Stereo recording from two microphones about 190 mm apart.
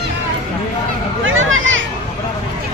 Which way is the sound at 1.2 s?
90° right.